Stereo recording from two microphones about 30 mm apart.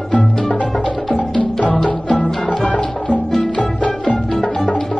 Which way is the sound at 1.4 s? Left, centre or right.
Left.